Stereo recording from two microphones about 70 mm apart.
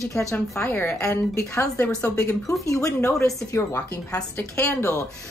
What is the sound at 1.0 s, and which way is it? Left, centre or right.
A woman's voice, left.